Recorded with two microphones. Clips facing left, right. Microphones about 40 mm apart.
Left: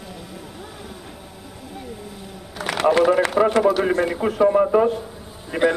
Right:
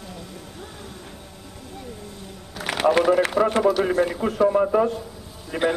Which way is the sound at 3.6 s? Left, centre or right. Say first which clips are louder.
Left 1 dB; centre.